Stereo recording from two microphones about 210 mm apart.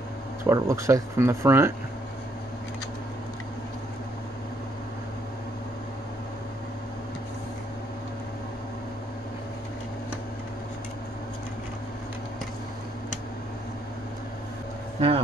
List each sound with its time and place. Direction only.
0.4 s speech: 15° right (ahead or behind)
15.0 s vehicle: 25° right (ahead or behind)